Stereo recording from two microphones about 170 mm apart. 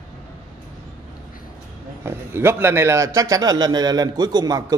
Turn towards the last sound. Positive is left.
turn(degrees=-20)  # may be behind; listen again after turning